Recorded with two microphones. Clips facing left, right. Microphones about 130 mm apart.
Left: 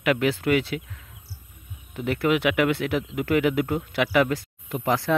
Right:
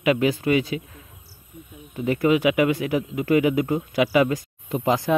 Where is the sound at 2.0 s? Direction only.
75° left (ahead or behind).